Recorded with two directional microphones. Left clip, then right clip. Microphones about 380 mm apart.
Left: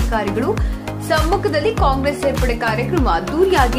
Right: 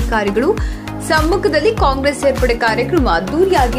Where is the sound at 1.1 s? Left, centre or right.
Centre.